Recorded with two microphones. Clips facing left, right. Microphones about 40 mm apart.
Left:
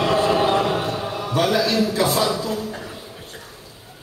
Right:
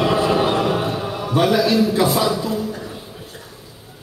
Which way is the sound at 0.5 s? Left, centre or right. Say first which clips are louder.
Right 1 dB; centre.